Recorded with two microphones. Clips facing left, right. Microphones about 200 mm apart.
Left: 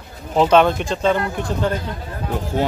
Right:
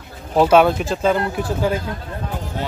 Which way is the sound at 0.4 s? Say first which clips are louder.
Right 1 dB; 10° right (ahead or behind).